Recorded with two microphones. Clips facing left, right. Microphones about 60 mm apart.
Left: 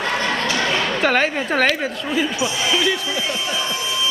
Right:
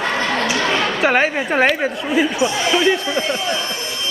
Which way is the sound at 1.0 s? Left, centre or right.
Centre.